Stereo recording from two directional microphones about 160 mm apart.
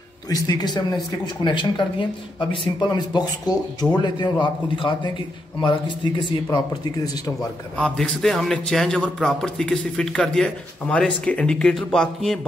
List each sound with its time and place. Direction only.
0.3 s a man's voice: 25° left (ahead or behind)
7.8 s a man's voice: 5° left (ahead or behind)